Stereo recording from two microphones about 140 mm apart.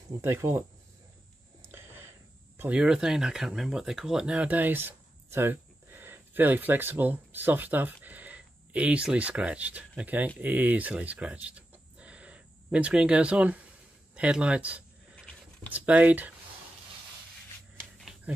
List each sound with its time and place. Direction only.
0.2 s speech: 20° right (ahead or behind)
1.7 s speech: 15° right (ahead or behind)
15.1 s a sound: 5° left (ahead or behind)
15.7 s speech: 10° right (ahead or behind)